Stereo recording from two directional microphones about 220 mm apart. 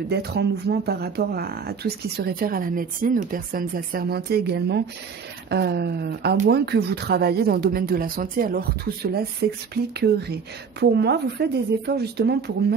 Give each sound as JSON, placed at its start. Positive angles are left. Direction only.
{"t": 0.1, "sound": "speech", "side_deg": -45}